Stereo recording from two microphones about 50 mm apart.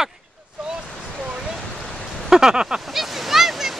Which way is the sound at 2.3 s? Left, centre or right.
Centre.